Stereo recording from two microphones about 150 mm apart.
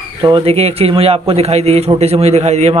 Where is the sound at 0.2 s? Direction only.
35° right (ahead or behind).